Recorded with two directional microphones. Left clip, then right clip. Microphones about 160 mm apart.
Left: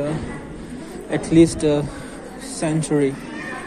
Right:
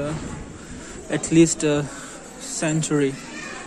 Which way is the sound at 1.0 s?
60° right (ahead or behind).